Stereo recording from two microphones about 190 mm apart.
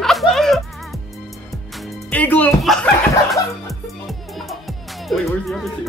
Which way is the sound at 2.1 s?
10° left (ahead or behind).